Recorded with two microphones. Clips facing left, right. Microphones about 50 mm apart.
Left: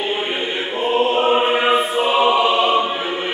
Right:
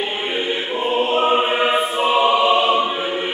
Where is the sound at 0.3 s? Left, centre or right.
Centre.